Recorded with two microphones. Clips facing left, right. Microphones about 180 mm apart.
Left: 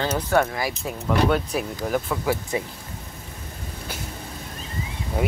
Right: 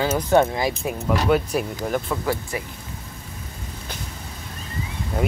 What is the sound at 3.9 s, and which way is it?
Vehicle, 10° left (ahead or behind).